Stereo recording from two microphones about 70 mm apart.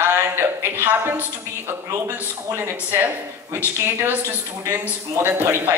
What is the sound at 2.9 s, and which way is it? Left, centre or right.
A woman's voice, right.